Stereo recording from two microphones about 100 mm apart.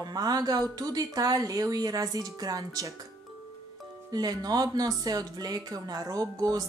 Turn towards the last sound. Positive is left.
turn(degrees=-40)  # may be behind; listen again after turning